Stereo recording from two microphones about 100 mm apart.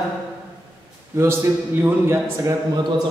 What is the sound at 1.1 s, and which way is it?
A man's voice, 30° right (ahead or behind).